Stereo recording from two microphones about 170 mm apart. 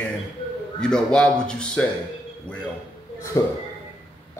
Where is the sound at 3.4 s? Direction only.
20° left (ahead or behind).